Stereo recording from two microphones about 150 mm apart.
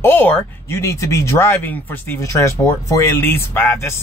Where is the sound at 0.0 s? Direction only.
15° left (ahead or behind).